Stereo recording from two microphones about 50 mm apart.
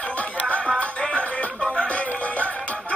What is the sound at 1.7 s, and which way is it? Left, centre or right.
Music, left.